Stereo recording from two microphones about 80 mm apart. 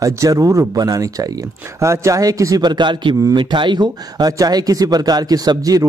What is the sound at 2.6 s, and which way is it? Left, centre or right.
A man's voice, right.